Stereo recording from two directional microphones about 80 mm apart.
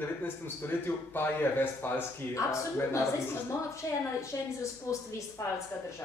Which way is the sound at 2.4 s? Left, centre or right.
Left.